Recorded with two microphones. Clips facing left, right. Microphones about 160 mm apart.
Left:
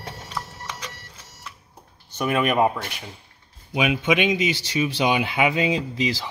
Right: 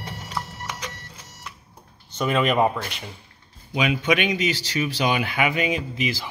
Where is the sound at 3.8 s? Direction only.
20° left (ahead or behind).